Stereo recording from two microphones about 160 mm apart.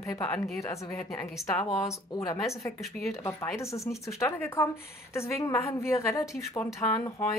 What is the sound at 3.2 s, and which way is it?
A woman's voice, 20° left (ahead or behind).